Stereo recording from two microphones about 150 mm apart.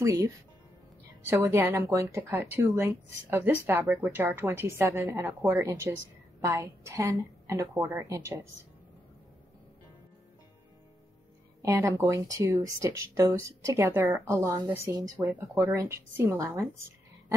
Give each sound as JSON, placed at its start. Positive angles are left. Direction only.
{"t": 0.0, "sound": "speech", "side_deg": -25}
{"t": 11.6, "sound": "speech", "side_deg": -15}